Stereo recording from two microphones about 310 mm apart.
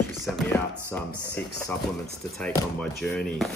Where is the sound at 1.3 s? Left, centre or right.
Centre.